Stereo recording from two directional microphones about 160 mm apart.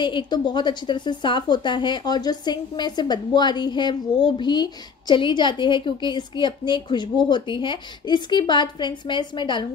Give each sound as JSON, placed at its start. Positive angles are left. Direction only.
{"t": 0.0, "sound": "a woman's voice", "side_deg": 30}